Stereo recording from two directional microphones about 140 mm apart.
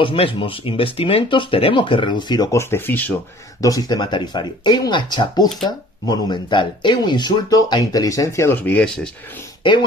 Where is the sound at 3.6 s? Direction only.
25° left (ahead or behind); by 9.4 s 10° left (ahead or behind).